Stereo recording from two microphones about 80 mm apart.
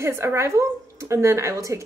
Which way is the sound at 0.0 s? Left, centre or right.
Right.